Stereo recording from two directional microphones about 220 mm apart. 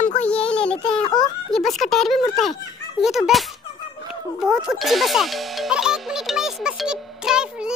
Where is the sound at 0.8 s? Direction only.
20° left (ahead or behind).